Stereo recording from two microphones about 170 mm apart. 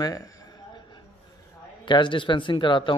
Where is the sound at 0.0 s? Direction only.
20° left (ahead or behind).